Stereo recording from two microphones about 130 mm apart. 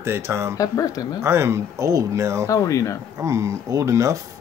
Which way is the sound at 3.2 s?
25° right (ahead or behind).